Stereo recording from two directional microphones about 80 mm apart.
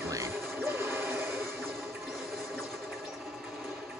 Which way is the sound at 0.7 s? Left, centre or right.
Right.